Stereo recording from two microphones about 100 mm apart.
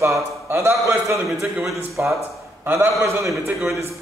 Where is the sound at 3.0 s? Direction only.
30° right (ahead or behind).